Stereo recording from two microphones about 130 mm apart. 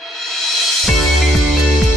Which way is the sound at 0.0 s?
Centre (ahead or behind).